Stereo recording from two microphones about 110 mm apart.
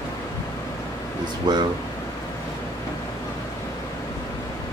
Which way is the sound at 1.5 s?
40° right (ahead or behind).